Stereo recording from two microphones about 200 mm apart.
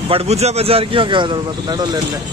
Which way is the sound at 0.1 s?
30° right (ahead or behind).